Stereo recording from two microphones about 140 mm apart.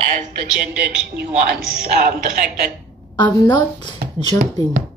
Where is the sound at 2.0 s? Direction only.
85° right.